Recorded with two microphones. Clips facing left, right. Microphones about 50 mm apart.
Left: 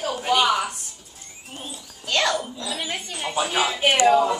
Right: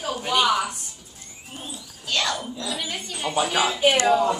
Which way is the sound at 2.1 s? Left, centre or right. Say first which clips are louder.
Left 3 dB; left.